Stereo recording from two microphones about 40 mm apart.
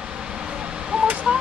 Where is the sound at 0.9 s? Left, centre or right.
Right.